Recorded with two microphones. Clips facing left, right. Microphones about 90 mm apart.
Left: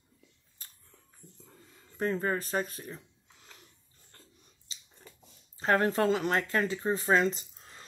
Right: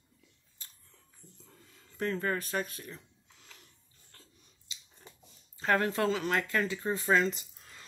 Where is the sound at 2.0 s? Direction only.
30° left (ahead or behind).